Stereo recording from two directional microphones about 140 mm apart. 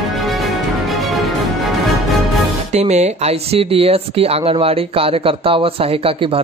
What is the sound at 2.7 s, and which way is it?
A man's voice, 55° right (ahead or behind).